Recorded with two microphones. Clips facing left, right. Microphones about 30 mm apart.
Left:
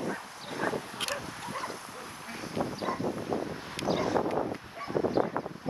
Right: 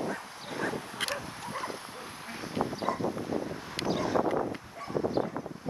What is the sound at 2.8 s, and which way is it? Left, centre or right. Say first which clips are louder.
Wind: right 1 dB; centre.